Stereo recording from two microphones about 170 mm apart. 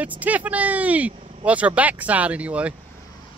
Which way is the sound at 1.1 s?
35° right (ahead or behind).